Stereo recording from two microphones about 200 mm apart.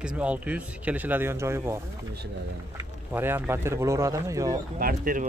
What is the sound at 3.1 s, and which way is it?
A man's voice, 10° right (ahead or behind).